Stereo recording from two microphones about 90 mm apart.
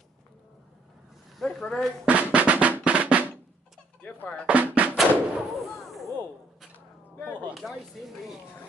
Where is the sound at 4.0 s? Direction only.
15° left (ahead or behind).